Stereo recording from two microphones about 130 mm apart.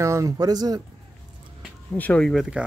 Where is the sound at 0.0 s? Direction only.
25° right (ahead or behind).